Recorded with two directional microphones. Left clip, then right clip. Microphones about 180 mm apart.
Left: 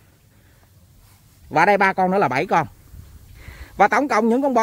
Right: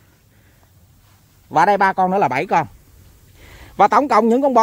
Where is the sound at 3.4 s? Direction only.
15° right (ahead or behind).